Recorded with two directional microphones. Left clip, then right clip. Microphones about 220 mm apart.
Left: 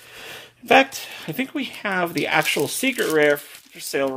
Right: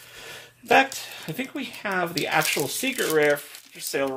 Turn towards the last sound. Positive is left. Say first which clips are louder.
# left 3 dB
turn(degrees=50)  # may be behind; listen again after turning